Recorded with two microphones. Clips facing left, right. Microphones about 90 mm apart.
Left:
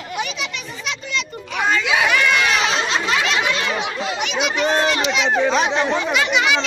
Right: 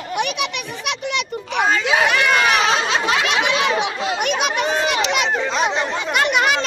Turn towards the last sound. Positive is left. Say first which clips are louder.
# right 1 dB
turn(degrees=-50)  # may be behind; listen again after turning